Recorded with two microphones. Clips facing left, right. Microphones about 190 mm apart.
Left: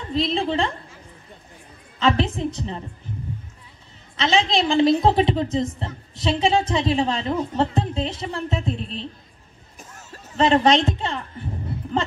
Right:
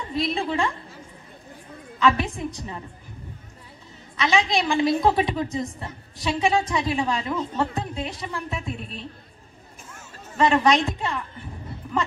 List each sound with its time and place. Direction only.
0.1 s a woman's voice: 25° left (ahead or behind)
2.0 s a woman's voice: 25° left (ahead or behind)
4.2 s a woman's voice: 25° left (ahead or behind)
10.3 s a woman's voice: 25° left (ahead or behind)